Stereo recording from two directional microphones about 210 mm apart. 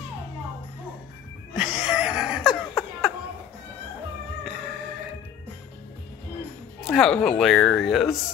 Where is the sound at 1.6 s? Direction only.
5° right (ahead or behind).